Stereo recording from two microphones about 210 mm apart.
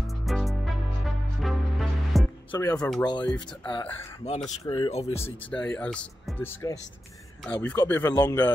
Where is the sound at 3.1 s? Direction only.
20° left (ahead or behind).